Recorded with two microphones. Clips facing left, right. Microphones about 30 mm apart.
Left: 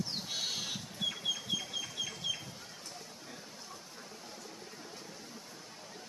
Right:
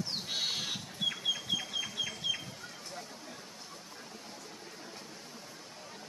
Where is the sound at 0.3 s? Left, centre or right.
Right.